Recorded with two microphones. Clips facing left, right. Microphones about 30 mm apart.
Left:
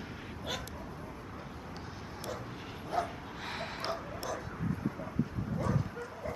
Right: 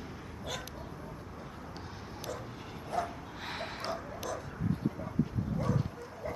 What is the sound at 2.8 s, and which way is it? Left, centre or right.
Bow-wow, centre.